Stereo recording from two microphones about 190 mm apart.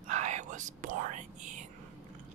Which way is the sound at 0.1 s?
40° right (ahead or behind).